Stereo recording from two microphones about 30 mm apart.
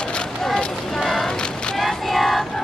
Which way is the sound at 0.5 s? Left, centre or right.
Centre.